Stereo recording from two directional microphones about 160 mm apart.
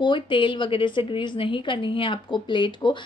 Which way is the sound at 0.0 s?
30° left (ahead or behind).